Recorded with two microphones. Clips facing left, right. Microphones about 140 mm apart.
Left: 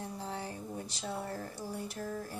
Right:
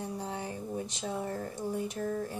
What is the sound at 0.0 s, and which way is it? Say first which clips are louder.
Speech: right 3 dB; 15° right (ahead or behind).